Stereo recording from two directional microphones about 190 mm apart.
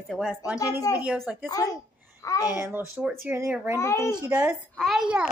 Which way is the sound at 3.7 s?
15° left (ahead or behind).